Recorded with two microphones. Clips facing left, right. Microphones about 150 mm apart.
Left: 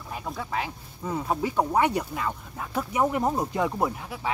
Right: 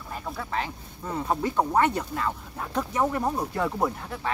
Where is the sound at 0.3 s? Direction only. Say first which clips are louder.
Even; 5° left (ahead or behind).